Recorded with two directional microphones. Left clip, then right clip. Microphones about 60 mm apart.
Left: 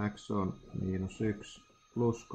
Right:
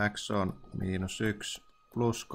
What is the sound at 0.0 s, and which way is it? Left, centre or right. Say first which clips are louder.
Speech: right 5 dB; centre.